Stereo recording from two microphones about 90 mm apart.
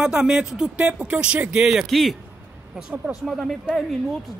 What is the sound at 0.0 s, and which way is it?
Speech, 10° right (ahead or behind).